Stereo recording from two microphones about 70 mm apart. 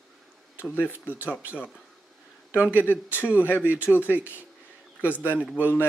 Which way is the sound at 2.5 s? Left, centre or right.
Left.